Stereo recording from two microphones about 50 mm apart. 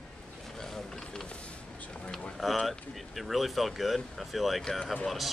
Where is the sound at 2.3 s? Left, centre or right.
Centre.